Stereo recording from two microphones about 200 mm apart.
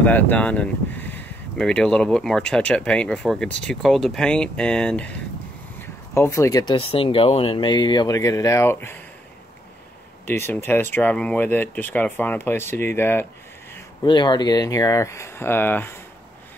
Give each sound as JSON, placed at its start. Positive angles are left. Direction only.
{"t": 0.0, "sound": "speech", "side_deg": 10}
{"t": 10.2, "sound": "speech", "side_deg": 10}
{"t": 14.0, "sound": "speech", "side_deg": 20}